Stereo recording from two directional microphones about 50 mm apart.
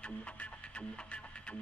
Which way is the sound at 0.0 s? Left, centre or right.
Left.